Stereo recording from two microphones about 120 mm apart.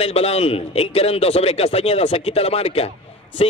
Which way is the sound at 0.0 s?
60° left (ahead or behind).